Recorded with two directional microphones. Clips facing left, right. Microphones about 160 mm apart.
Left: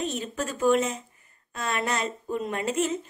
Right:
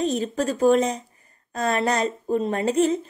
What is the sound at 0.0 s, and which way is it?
Speech, 35° right (ahead or behind).